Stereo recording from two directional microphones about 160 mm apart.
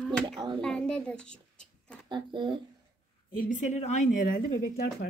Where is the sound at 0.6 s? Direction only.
5° left (ahead or behind).